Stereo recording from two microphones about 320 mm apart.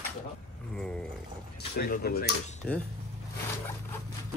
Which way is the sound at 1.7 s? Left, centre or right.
Left.